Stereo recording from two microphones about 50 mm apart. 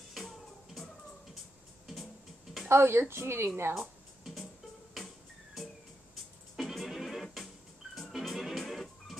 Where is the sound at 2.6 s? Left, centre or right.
Right.